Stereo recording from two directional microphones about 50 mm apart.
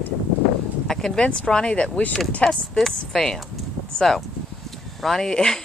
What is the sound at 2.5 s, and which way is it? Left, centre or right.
A woman's voice, centre.